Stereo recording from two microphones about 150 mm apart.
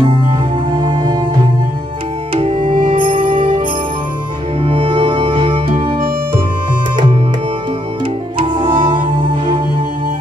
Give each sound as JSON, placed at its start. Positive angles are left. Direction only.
{"t": 0.0, "sound": "music", "side_deg": -30}
{"t": 2.3, "sound": "music", "side_deg": -35}
{"t": 4.6, "sound": "music", "side_deg": -35}
{"t": 8.4, "sound": "music", "side_deg": -35}